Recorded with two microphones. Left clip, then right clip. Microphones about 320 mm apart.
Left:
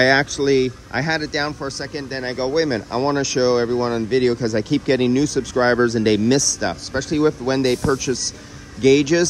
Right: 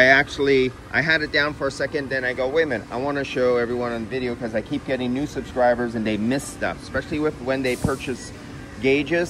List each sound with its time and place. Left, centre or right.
0.0 s speech: centre